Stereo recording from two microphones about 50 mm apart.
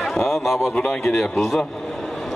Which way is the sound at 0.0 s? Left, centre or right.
Centre.